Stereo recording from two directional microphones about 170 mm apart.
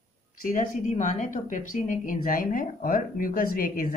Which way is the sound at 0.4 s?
50° left (ahead or behind).